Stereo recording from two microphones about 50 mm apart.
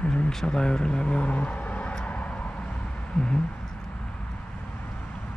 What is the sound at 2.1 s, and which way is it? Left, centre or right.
Vehicle, left.